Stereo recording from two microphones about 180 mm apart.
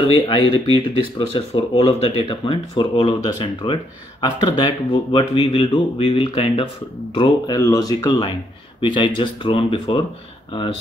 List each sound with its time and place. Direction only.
0.1 s speech: 25° left (ahead or behind)